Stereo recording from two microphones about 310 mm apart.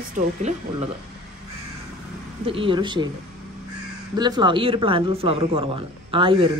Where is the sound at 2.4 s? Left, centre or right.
Centre.